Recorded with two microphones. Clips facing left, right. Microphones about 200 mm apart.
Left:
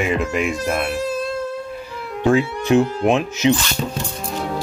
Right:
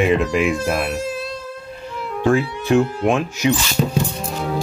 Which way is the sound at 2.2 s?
20° left (ahead or behind).